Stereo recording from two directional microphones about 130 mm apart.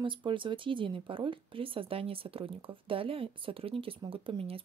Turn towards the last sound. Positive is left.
turn(degrees=-45)  # may be behind; listen again after turning